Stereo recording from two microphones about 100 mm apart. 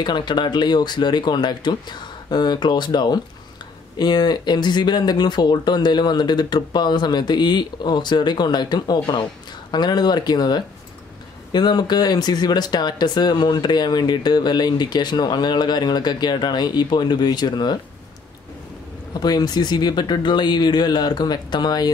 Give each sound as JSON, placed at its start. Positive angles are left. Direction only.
{"t": 0.0, "sound": "speech", "side_deg": 50}
{"t": 19.1, "sound": "speech", "side_deg": 40}